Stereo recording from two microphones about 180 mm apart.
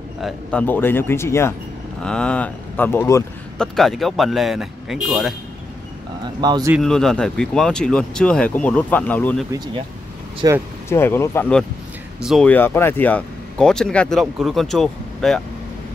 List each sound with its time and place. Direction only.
0.2 s speech: 5° left (ahead or behind)
3.5 s speech: 5° left (ahead or behind)
6.2 s speech: 25° right (ahead or behind)
6.8 s speech: centre (ahead or behind)
10.4 s speech: 20° right (ahead or behind)
10.9 s speech: 15° left (ahead or behind)
12.2 s speech: centre (ahead or behind)
12.4 s speech: 10° left (ahead or behind)